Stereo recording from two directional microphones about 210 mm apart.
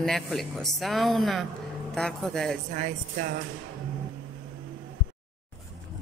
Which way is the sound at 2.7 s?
45° right (ahead or behind).